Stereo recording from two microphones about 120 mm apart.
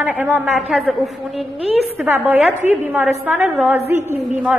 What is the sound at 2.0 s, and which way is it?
A woman's voice, 15° right (ahead or behind).